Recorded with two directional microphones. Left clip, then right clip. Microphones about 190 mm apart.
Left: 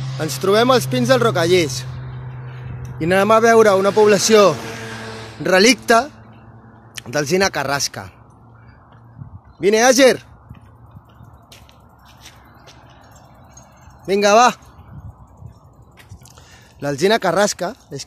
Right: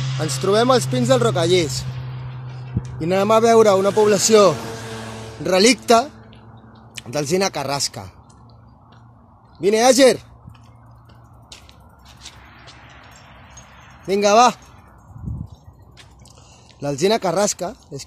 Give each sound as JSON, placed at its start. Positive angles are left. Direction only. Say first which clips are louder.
{"t": 0.6, "sound": "a man's voice", "louder": "left 1 dB", "side_deg": 0}
{"t": 3.0, "sound": "a man's voice", "louder": "left 2 dB", "side_deg": 10}
{"t": 9.6, "sound": "a man's voice", "louder": "left 1 dB", "side_deg": 0}
{"t": 12.2, "sound": "a sound", "louder": "right 4 dB", "side_deg": 20}
{"t": 14.0, "sound": "a man's voice", "louder": "left 1 dB", "side_deg": 0}
{"t": 16.8, "sound": "a man's voice", "louder": "left 2 dB", "side_deg": 0}